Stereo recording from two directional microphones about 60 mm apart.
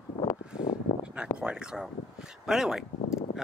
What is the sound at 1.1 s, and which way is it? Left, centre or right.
Speech, centre.